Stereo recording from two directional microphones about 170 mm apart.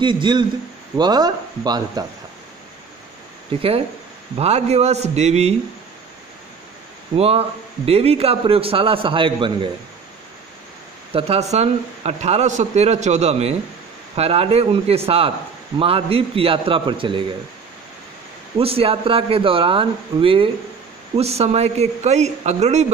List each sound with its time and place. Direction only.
0.0 s speech: 30° right (ahead or behind)
3.5 s a man's voice: 35° right (ahead or behind)
7.2 s a man's voice: 35° right (ahead or behind)
11.1 s a man's voice: 35° right (ahead or behind)
18.6 s a man's voice: 35° right (ahead or behind)